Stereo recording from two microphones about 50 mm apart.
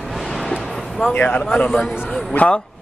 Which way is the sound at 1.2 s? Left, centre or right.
Left.